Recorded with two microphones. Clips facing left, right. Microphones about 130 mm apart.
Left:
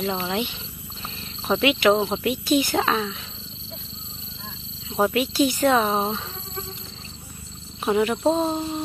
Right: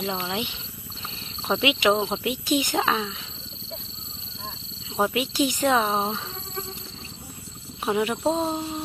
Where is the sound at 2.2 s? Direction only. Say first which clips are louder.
Left 3 dB; 15° right (ahead or behind).